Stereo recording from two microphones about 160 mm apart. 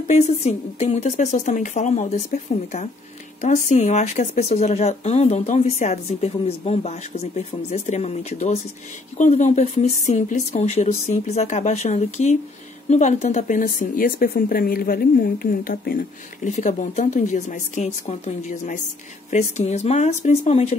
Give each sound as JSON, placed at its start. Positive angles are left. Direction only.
{"t": 0.1, "sound": "speech", "side_deg": 45}